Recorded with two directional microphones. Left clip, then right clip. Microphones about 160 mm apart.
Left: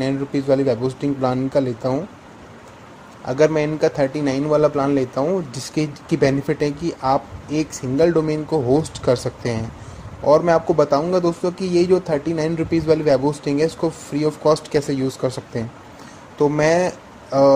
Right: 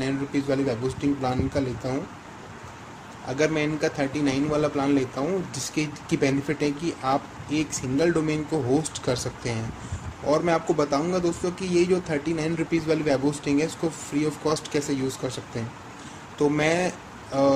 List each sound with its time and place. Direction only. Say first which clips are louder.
0.0 s speech: left 5 dB; 40° left (ahead or behind)
3.3 s speech: left 7 dB; 40° left (ahead or behind)